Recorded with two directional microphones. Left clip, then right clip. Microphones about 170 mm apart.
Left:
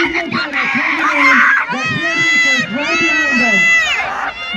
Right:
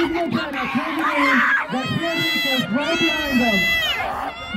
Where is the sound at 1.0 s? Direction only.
Centre (ahead or behind).